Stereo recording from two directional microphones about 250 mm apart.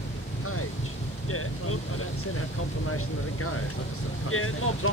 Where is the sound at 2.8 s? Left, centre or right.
Left.